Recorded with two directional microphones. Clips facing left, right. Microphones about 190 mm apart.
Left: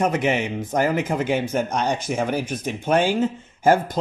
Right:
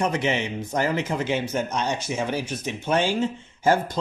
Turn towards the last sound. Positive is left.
turn(degrees=50)  # may be behind; listen again after turning